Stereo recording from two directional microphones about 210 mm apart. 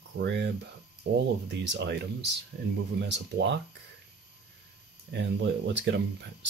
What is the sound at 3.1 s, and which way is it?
Speech, 55° right (ahead or behind).